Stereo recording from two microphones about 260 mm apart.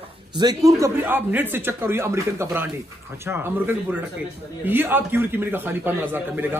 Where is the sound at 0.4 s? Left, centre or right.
Centre.